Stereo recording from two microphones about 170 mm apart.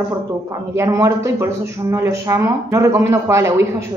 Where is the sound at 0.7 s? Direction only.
15° right (ahead or behind).